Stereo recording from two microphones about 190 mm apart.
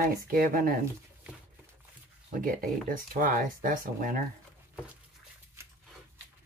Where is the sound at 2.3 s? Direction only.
45° right (ahead or behind).